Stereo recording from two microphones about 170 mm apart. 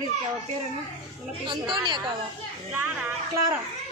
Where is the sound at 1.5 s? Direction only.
25° right (ahead or behind).